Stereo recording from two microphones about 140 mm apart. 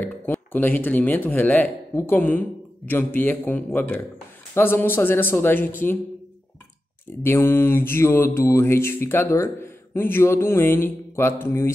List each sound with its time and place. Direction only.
0.0 s a man's voice: 15° left (ahead or behind)
4.6 s mantra: 15° left (ahead or behind)
7.2 s mantra: 15° left (ahead or behind)